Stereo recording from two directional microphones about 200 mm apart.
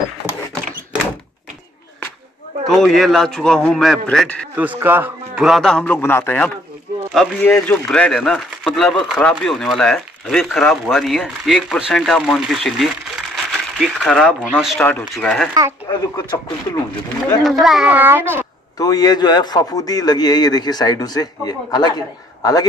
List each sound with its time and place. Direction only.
2.6 s speech: centre (ahead or behind)
4.6 s speech: 10° right (ahead or behind)
15.9 s a man's voice: 25° left (ahead or behind)
17.4 s a woman's voice: centre (ahead or behind)
18.8 s a man's voice: 20° left (ahead or behind)